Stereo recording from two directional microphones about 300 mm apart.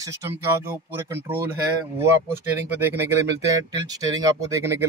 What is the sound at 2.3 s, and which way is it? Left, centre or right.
Speech, centre.